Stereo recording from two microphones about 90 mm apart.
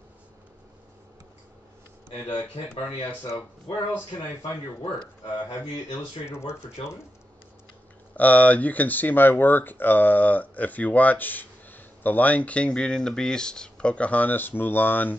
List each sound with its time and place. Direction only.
2.3 s speech: 70° left (ahead or behind)
4.8 s speech: 60° left (ahead or behind)
6.2 s speech: 30° left (ahead or behind)
8.2 s speech: 15° left (ahead or behind)